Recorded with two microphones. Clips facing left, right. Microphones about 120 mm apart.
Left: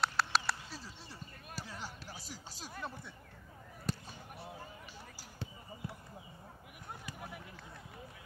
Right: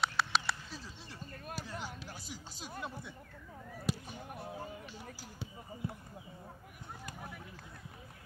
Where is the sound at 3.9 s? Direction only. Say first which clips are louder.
Right 3 dB; 5° right (ahead or behind).